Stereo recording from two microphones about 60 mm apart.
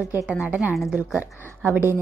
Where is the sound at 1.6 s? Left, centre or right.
Right.